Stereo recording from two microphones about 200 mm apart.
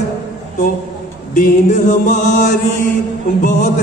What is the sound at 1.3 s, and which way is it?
A man's voice, 40° left (ahead or behind).